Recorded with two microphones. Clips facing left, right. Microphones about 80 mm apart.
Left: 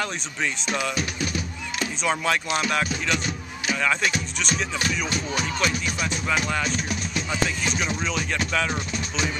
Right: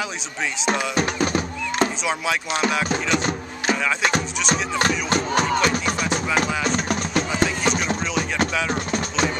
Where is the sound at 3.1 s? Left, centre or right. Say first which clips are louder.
Right 6 dB; right.